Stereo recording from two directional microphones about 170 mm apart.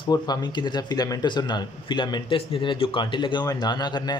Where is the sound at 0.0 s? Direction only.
25° left (ahead or behind).